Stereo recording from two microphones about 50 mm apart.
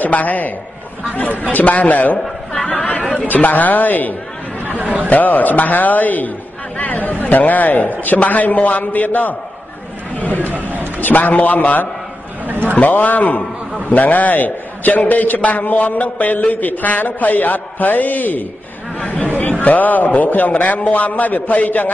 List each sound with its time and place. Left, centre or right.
0.0 s a man's voice: left
2.7 s chatter: left
3.3 s a man's voice: left
5.1 s a man's voice: left
10.5 s speech: right
11.0 s a man's voice: left
12.4 s a sound: right
12.7 s a man's voice: left